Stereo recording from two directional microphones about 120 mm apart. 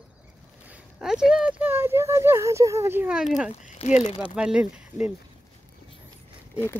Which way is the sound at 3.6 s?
75° left (ahead or behind).